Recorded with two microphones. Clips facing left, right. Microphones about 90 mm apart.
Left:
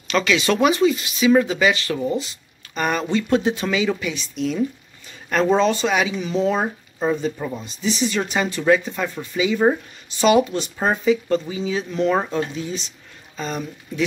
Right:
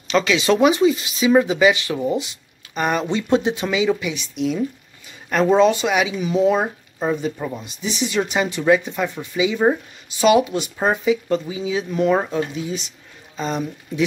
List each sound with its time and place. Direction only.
0.1 s speech: 20° right (ahead or behind)